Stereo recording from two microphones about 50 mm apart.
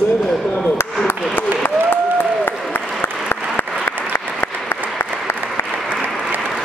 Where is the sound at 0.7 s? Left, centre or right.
Left.